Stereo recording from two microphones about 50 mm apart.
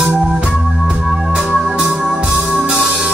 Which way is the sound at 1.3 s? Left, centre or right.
Centre.